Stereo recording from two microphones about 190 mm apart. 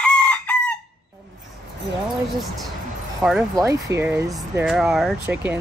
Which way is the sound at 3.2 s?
15° right (ahead or behind).